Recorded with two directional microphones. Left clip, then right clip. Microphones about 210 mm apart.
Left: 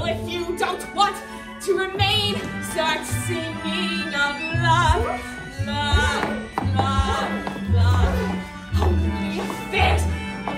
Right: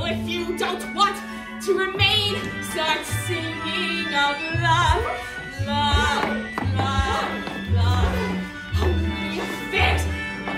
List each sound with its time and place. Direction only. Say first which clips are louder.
0.0 s music: left 1 dB; centre (ahead or behind)
4.1 s music: right 2 dB; centre (ahead or behind)
9.3 s music: even; centre (ahead or behind)